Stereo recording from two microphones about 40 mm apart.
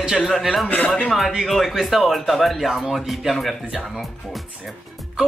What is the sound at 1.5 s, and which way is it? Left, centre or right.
Speech, centre.